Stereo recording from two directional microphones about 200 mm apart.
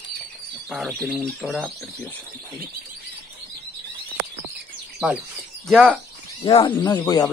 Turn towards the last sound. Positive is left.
turn(degrees=20)  # may be behind; listen again after turning